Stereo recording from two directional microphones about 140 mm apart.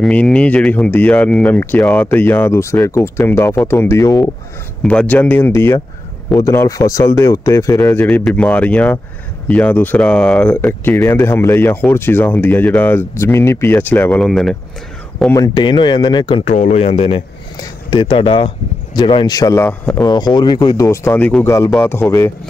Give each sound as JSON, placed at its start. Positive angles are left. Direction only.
{"t": 0.0, "sound": "speech", "side_deg": 5}
{"t": 7.8, "sound": "speech", "side_deg": 10}
{"t": 14.2, "sound": "speech", "side_deg": 5}
{"t": 15.3, "sound": "speech", "side_deg": 30}
{"t": 16.4, "sound": "speech", "side_deg": 50}
{"t": 20.8, "sound": "speech", "side_deg": 20}
{"t": 22.0, "sound": "speech", "side_deg": 0}